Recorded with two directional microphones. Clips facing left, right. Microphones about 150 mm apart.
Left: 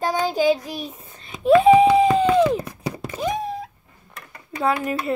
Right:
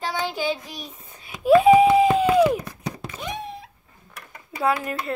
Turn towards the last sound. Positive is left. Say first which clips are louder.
# left 2 dB
turn(degrees=0)  # may be behind; listen again after turning